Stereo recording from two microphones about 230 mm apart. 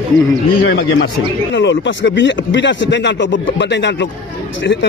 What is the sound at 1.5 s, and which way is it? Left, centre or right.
A man's voice, left.